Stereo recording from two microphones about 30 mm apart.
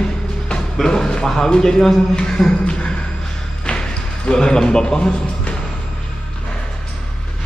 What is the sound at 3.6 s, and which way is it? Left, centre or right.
Speech, left.